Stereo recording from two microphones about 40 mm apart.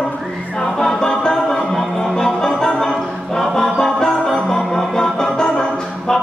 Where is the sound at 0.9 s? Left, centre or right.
Centre.